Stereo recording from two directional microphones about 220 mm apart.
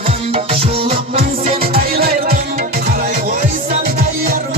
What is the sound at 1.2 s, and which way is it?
Music, 40° right (ahead or behind).